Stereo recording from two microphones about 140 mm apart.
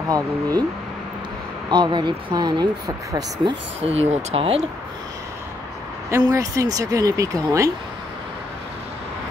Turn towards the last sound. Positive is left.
turn(degrees=-20)  # may be behind; listen again after turning